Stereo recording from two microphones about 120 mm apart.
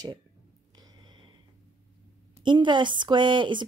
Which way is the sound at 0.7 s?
35° right (ahead or behind).